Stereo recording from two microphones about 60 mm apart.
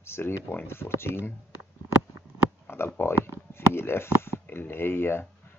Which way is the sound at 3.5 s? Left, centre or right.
Left.